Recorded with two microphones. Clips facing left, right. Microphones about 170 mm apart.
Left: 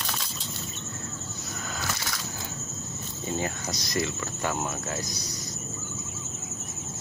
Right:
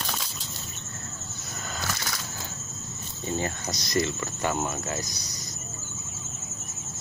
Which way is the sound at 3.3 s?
5° left (ahead or behind).